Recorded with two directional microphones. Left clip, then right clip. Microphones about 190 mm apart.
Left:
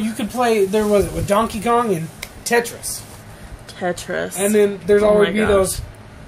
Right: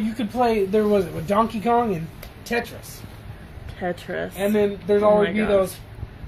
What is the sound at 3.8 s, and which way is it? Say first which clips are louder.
Speech: left 5 dB; 5° left (ahead or behind).